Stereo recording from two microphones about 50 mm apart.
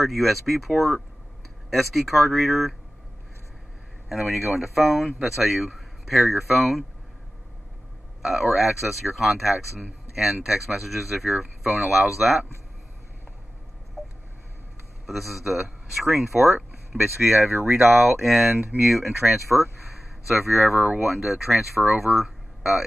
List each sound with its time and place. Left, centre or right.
0.0 s speech: centre
4.1 s speech: centre
8.2 s speech: centre
15.0 s speech: centre
17.4 s speech: right
17.9 s speech: centre